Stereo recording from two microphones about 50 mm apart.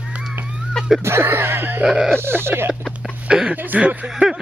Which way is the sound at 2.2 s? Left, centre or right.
Right.